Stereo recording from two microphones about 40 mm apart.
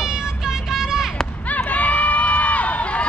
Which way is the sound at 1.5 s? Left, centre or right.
Left.